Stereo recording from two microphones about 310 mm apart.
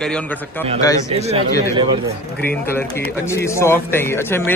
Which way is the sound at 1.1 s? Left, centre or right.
Centre.